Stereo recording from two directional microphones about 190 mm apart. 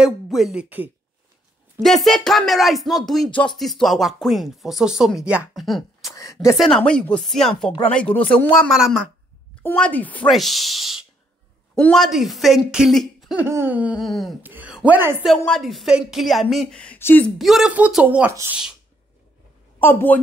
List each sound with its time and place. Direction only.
0.0 s speech: centre (ahead or behind)
9.6 s speech: 10° left (ahead or behind); by 15.2 s 10° right (ahead or behind)
15.3 s speech: 5° left (ahead or behind)
17.4 s speech: centre (ahead or behind)
19.8 s a woman's voice: 10° left (ahead or behind)